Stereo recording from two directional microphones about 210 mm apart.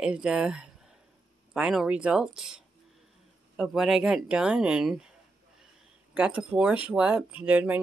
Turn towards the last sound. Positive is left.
turn(degrees=-10)  # may be behind; listen again after turning